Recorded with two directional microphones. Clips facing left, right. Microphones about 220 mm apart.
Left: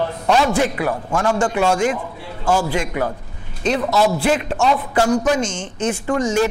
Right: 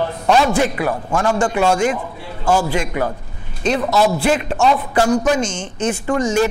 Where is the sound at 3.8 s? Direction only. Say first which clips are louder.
Right 1 dB; 30° right (ahead or behind).